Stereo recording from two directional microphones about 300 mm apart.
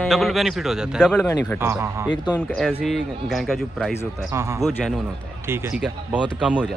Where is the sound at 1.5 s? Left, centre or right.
Centre.